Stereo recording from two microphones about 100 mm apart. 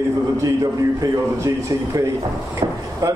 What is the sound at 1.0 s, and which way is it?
A man's voice, 35° right (ahead or behind).